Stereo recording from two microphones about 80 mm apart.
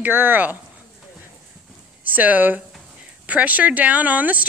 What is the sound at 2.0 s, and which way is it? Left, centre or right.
Speech, right.